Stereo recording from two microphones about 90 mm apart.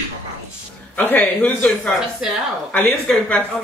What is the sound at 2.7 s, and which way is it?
Speech, 15° left (ahead or behind).